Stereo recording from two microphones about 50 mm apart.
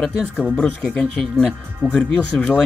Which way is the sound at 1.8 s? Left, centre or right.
Right.